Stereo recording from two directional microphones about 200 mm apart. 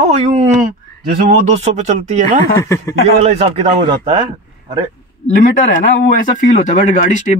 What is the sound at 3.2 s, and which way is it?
Speech, 30° right (ahead or behind).